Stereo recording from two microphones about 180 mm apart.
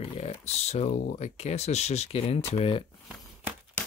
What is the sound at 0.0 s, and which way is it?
Speech, 35° left (ahead or behind).